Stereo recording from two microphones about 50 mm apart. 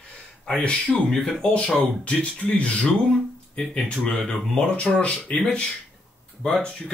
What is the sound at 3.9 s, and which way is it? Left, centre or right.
A man's voice, left.